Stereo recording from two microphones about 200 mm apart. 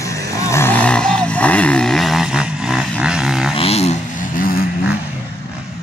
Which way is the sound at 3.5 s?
30° left (ahead or behind).